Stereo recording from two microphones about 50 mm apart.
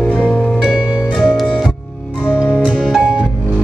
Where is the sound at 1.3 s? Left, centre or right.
Centre.